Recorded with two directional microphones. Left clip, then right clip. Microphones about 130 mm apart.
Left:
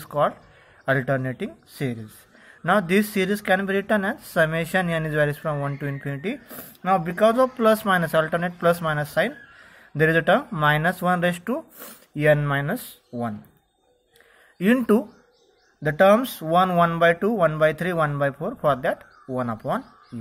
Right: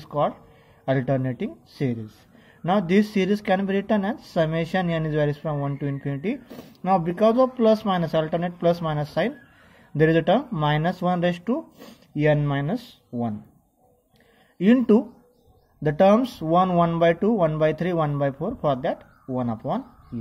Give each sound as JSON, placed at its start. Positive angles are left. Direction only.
{"t": 0.0, "sound": "a sound", "side_deg": -20}
{"t": 0.8, "sound": "a woman's voice", "side_deg": -20}
{"t": 7.5, "sound": "a woman's voice", "side_deg": -20}
{"t": 14.6, "sound": "speech", "side_deg": -15}
{"t": 15.8, "sound": "a woman's voice", "side_deg": -30}